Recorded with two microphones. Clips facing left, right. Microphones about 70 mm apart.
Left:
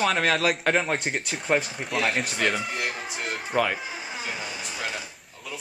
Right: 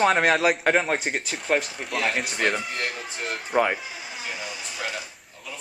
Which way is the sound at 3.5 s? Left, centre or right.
Centre.